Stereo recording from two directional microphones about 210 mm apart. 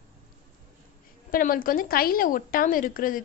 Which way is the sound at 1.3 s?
40° left (ahead or behind).